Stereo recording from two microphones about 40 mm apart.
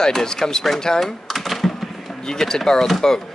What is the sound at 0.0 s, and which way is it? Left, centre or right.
Speech, centre.